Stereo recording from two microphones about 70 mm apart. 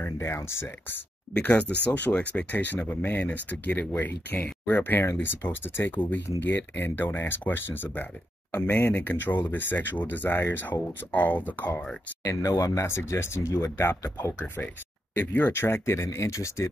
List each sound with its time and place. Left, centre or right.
0.0 s speech: left
1.4 s speech: left
12.2 s speech: left
12.8 s speech: left